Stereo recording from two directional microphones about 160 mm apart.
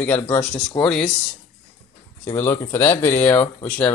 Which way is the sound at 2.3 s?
15° left (ahead or behind).